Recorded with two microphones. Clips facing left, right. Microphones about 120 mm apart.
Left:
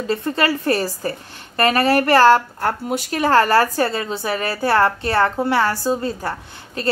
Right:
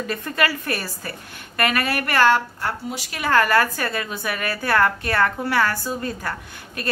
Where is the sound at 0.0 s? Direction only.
25° left (ahead or behind); by 3.2 s 50° left (ahead or behind).